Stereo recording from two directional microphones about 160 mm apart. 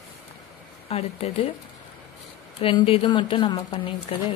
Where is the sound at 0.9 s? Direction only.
40° left (ahead or behind).